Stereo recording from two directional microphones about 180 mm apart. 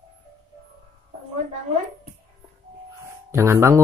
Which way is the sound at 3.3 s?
15° right (ahead or behind).